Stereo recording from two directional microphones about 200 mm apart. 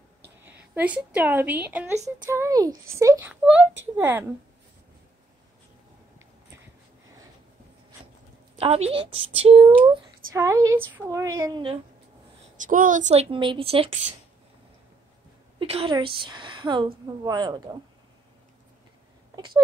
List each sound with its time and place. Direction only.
0.5 s a woman's voice: 5° right (ahead or behind)
8.5 s a woman's voice: 30° right (ahead or behind)
10.3 s a woman's voice: 15° right (ahead or behind)
12.5 s a woman's voice: 40° right (ahead or behind)
15.6 s a woman's voice: 30° right (ahead or behind)